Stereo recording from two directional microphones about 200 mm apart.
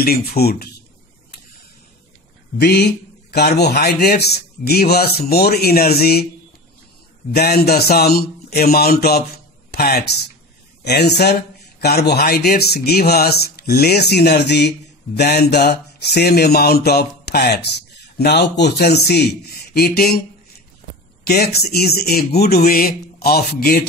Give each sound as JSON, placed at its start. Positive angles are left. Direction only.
{"t": 0.0, "sound": "speech", "side_deg": 50}
{"t": 2.6, "sound": "speech", "side_deg": 55}
{"t": 7.3, "sound": "speech", "side_deg": 50}
{"t": 21.3, "sound": "speech", "side_deg": 55}